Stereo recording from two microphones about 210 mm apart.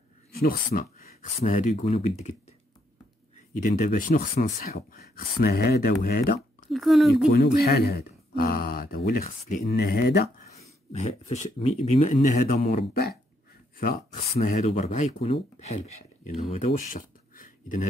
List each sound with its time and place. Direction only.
0.3 s speech: 45° left (ahead or behind)
1.4 s speech: 30° left (ahead or behind)
3.5 s speech: 40° left (ahead or behind)
6.7 s speech: centre (ahead or behind)
7.2 s speech: 45° left (ahead or behind)
10.9 s speech: 30° left (ahead or behind)
14.1 s speech: 35° left (ahead or behind)